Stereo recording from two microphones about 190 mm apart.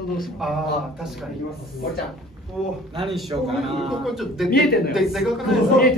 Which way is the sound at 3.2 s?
35° right (ahead or behind).